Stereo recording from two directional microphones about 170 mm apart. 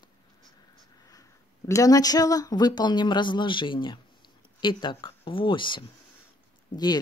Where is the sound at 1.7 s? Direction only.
20° left (ahead or behind).